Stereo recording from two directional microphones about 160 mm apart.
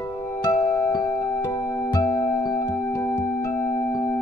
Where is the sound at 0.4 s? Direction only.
20° left (ahead or behind).